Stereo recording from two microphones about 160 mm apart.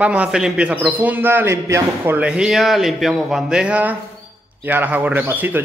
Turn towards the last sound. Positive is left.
turn(degrees=-10)  # may be behind; listen again after turning